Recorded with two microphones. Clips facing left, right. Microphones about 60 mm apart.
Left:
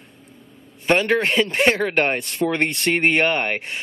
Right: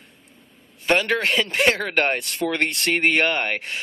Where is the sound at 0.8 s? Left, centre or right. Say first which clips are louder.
Left 2 dB; left.